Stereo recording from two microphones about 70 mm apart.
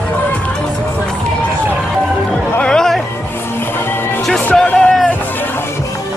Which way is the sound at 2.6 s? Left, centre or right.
Centre.